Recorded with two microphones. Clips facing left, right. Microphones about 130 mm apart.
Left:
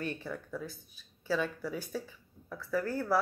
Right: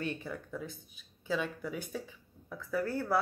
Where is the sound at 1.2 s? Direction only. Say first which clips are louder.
Left 2 dB; 20° right (ahead or behind).